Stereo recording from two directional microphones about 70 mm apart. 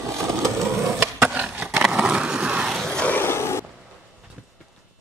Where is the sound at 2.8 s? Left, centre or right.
Centre.